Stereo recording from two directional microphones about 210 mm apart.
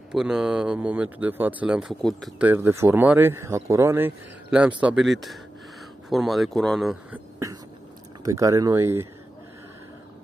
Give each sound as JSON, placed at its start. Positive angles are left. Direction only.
{"t": 0.1, "sound": "speech", "side_deg": -5}
{"t": 8.3, "sound": "speech", "side_deg": -15}